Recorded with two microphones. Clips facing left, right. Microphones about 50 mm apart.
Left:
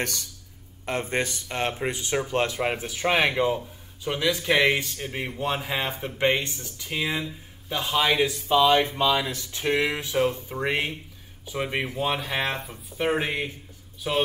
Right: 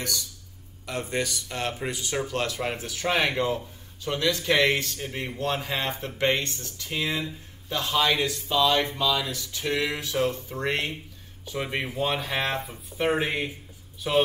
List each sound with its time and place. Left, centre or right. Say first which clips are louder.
0.0 s speech: left 2 dB; left
0.8 s speech: left 2 dB; left
9.8 s speech: left 2 dB; centre